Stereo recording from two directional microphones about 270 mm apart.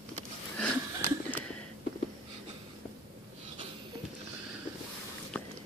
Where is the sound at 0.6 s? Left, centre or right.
Centre.